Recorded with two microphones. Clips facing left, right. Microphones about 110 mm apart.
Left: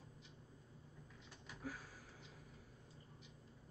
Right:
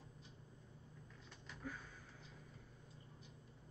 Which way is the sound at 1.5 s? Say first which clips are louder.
Left 1 dB; 5° left (ahead or behind).